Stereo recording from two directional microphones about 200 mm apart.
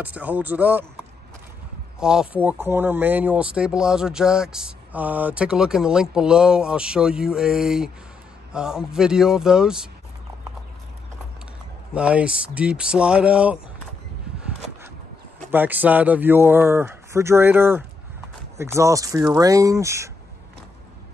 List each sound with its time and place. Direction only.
0.0 s speech: 10° right (ahead or behind)
2.0 s speech: 5° right (ahead or behind)
11.9 s speech: 5° right (ahead or behind)
15.5 s speech: 10° right (ahead or behind)